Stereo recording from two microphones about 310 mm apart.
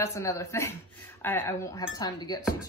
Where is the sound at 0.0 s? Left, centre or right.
Centre.